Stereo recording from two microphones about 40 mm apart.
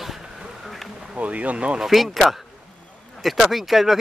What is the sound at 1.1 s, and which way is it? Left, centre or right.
Speech, right.